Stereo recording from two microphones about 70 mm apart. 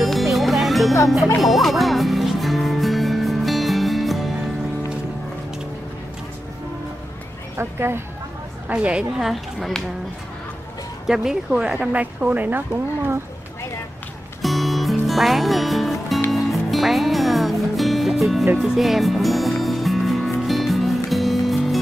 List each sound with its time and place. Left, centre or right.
0.0 s music: centre
7.5 s speech: right
8.7 s a woman's voice: centre
9.2 s speech: centre
11.1 s speech: centre; by 13.2 s right
14.4 s music: centre